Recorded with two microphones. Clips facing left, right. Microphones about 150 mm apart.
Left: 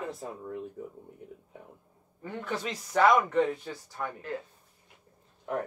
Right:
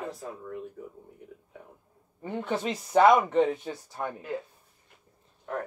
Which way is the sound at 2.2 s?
25° right (ahead or behind).